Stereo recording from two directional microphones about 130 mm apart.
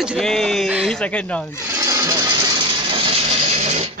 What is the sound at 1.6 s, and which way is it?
Music, 25° right (ahead or behind).